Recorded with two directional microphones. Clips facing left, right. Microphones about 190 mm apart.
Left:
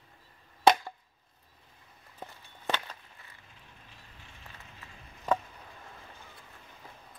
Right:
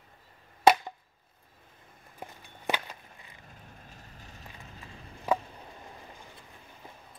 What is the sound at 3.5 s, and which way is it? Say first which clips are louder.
Vehicle: right 5 dB; 45° right (ahead or behind).